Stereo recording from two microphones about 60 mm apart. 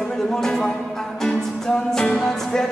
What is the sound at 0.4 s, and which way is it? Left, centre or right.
Speech, centre.